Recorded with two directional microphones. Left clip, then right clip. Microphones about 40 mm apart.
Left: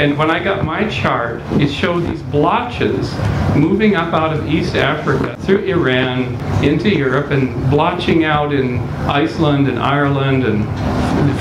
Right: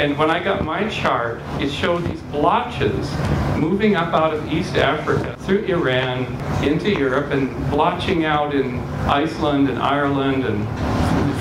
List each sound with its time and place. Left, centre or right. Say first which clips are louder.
0.0 s a man's voice: left 3 dB; right
11.1 s vehicle: left 5 dB; centre